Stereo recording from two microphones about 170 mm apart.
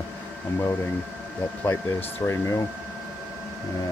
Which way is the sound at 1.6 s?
10° left (ahead or behind).